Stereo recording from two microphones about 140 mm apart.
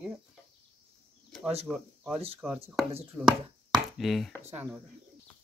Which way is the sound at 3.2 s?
10° right (ahead or behind).